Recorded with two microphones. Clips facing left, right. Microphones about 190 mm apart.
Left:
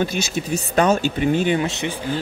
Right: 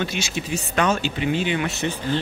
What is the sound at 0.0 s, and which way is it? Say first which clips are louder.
Speech: left 4 dB; 40° left (ahead or behind).